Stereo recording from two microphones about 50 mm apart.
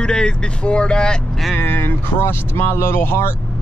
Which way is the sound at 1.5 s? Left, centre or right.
Left.